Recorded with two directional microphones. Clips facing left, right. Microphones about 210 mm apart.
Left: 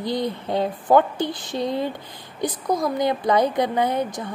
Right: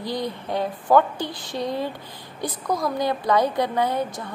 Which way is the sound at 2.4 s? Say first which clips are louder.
Left 3 dB; 25° left (ahead or behind).